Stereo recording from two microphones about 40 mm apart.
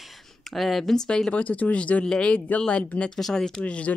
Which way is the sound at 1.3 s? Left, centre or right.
Left.